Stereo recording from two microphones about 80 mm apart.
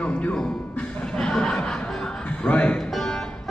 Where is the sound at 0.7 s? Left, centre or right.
Centre.